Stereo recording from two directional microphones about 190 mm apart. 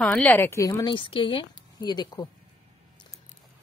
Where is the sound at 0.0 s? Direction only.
5° left (ahead or behind).